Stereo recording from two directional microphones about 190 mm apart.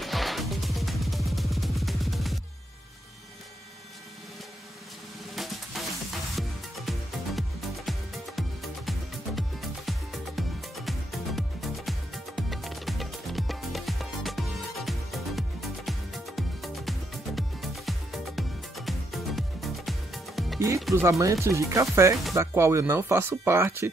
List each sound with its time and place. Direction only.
0.0 s music: centre (ahead or behind)
5.3 s music: centre (ahead or behind)
6.9 s music: centre (ahead or behind)
20.9 s speech: 15° right (ahead or behind)